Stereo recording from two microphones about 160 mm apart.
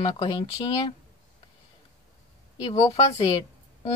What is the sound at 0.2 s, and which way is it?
Speech, 30° left (ahead or behind).